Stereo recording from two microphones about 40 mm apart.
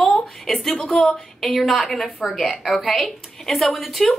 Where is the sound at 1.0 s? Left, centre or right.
Left.